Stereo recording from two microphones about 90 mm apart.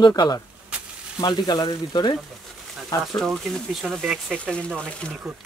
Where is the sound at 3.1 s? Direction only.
5° left (ahead or behind).